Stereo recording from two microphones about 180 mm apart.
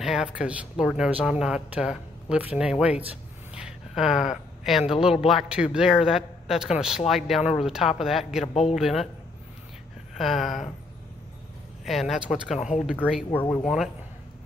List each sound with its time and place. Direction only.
0.0 s speech: 5° right (ahead or behind)
10.1 s speech: centre (ahead or behind)
11.8 s speech: centre (ahead or behind)
12.5 s speech: 40° left (ahead or behind)
13.3 s speech: 10° left (ahead or behind)